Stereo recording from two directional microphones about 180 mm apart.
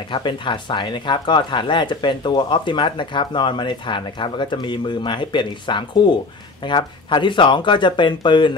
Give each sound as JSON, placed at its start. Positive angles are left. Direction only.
{"t": 0.1, "sound": "speech", "side_deg": 25}